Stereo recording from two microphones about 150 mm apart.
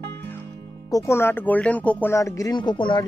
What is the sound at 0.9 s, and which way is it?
Speech, 20° left (ahead or behind).